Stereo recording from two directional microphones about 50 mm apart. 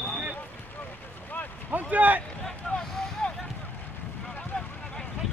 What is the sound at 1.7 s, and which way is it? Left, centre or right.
Boat, right.